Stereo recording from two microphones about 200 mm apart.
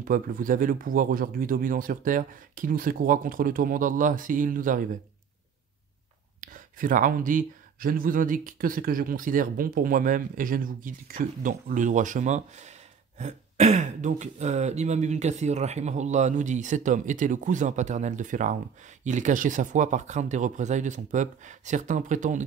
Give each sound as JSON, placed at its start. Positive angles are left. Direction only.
{"t": 0.0, "sound": "speech", "side_deg": -45}
{"t": 6.4, "sound": "speech", "side_deg": -40}